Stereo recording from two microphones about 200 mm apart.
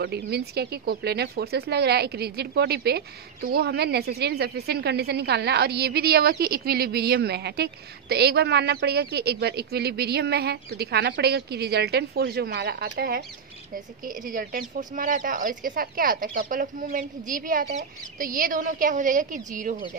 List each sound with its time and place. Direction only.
0.0 s a woman's voice: 55° right (ahead or behind)